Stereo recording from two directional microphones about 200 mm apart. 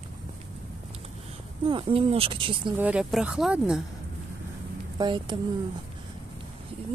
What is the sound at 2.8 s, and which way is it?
Speech, 5° right (ahead or behind).